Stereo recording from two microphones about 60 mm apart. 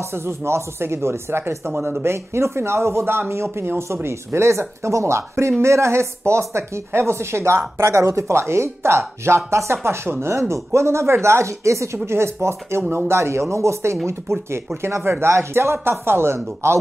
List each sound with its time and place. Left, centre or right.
0.1 s speech: right
2.3 s speech: right
10.5 s speech: right